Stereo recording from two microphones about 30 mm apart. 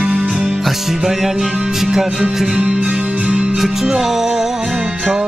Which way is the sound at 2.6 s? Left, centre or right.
Right.